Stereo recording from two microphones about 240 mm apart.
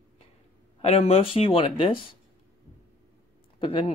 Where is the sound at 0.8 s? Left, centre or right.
Left.